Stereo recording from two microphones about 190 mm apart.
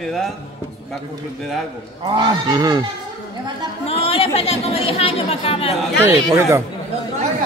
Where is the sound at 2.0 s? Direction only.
25° right (ahead or behind).